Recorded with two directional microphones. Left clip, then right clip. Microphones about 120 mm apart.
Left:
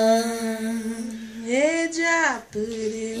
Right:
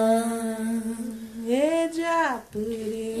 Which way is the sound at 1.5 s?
50° right (ahead or behind).